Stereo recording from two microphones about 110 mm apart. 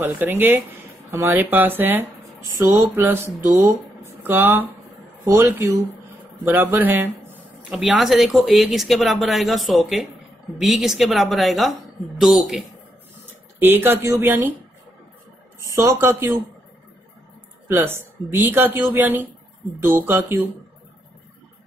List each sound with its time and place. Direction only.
0.0 s a man's voice: 20° right (ahead or behind)
7.7 s speech: centre (ahead or behind)
13.6 s a man's voice: 20° right (ahead or behind)
15.7 s a man's voice: 25° right (ahead or behind)
17.6 s a man's voice: 20° right (ahead or behind)